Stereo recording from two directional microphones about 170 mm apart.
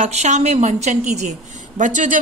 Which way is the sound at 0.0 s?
45° right (ahead or behind).